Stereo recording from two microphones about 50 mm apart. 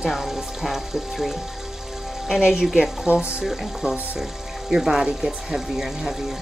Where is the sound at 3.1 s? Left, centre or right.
Right.